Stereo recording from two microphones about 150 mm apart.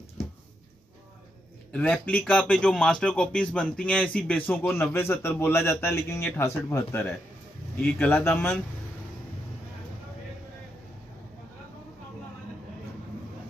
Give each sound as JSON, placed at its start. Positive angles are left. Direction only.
{"t": 1.7, "sound": "speech", "side_deg": 10}